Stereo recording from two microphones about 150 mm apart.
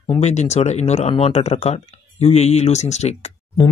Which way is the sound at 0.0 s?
40° left (ahead or behind).